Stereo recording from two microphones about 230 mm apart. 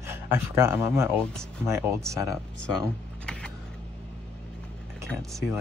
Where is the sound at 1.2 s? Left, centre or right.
Centre.